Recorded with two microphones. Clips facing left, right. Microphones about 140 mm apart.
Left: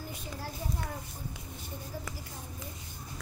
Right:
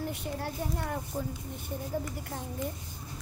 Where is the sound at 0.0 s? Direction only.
65° right (ahead or behind).